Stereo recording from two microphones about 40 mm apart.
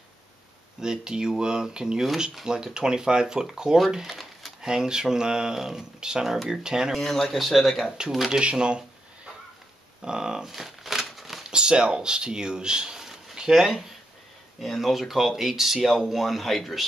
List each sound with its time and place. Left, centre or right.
0.7 s speech: centre
4.2 s a sound: centre
4.6 s speech: centre
6.2 s speech: centre
6.6 s speech: centre
7.0 s speech: centre
8.3 s speech: right
10.4 s crumpling: centre
11.5 s speech: right; by 16.8 s centre